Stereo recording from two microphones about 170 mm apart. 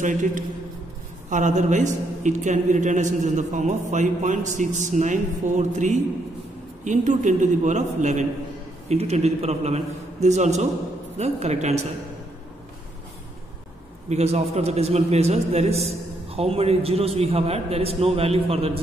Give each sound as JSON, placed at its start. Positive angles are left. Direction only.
{"t": 0.0, "sound": "a man's voice", "side_deg": -50}
{"t": 14.0, "sound": "a man's voice", "side_deg": -40}